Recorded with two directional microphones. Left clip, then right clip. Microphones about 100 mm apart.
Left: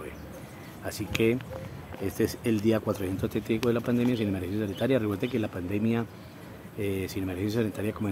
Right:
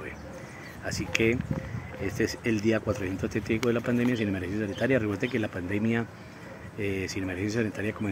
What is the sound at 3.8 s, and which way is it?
Speech, 30° left (ahead or behind).